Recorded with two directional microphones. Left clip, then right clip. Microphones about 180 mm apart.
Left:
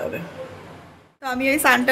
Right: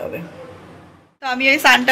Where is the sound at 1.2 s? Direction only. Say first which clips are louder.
Right 5 dB; 15° left (ahead or behind).